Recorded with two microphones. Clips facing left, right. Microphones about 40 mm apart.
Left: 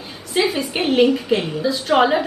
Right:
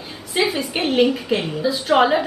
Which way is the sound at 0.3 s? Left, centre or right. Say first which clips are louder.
Left 1 dB; centre.